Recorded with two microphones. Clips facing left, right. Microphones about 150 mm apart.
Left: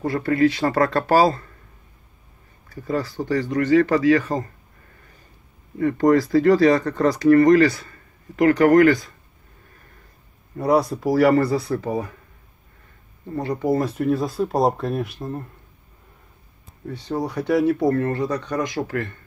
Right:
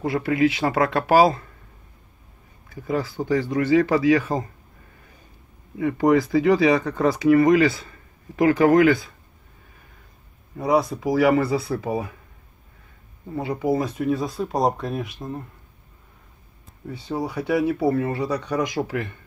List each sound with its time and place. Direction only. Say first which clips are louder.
0.0 s speech: left 1 dB; 5° right (ahead or behind)
1.0 s speech: right 2 dB; 20° right (ahead or behind)
3.3 s speech: left 1 dB; 15° right (ahead or behind)
5.8 s speech: left 2 dB; 5° right (ahead or behind)
10.5 s speech: left 2 dB; centre (ahead or behind)
13.3 s speech: left 1 dB; 5° right (ahead or behind)
16.8 s speech: left 2 dB; 5° right (ahead or behind)